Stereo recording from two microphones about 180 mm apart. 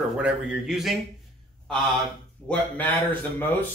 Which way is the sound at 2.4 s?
10° left (ahead or behind).